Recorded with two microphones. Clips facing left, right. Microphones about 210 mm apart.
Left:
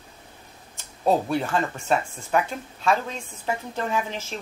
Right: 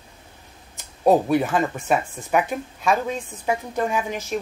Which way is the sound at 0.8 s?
15° right (ahead or behind).